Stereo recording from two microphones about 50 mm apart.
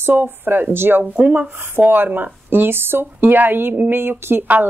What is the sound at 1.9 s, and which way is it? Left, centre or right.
A woman's voice, right.